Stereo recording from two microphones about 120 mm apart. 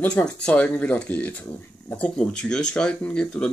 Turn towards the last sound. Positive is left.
turn(degrees=10)  # may be behind; listen again after turning